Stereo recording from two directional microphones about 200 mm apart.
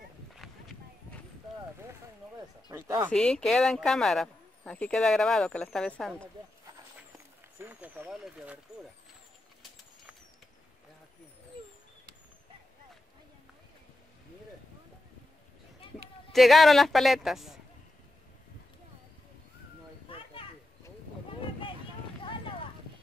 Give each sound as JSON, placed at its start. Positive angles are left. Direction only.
{"t": 2.7, "sound": "speech", "side_deg": -15}
{"t": 3.1, "sound": "speech", "side_deg": 5}
{"t": 7.5, "sound": "speech", "side_deg": -10}
{"t": 16.3, "sound": "speech", "side_deg": 0}
{"t": 20.1, "sound": "children playing", "side_deg": 25}